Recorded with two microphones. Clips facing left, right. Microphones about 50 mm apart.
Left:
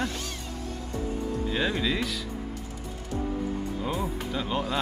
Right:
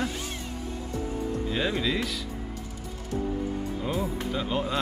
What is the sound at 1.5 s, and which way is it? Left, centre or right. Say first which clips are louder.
Speech: even; centre.